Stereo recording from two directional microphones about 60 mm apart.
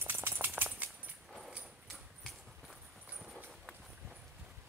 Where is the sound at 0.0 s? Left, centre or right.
Right.